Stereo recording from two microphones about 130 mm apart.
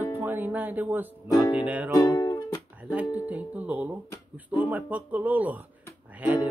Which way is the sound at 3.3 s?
10° right (ahead or behind).